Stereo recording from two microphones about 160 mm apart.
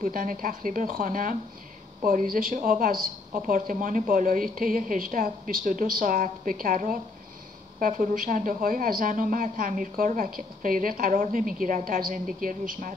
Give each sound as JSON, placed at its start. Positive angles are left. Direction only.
{"t": 0.0, "sound": "a woman's voice", "side_deg": -60}